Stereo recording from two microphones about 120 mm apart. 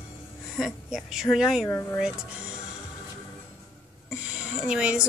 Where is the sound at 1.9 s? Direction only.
5° right (ahead or behind).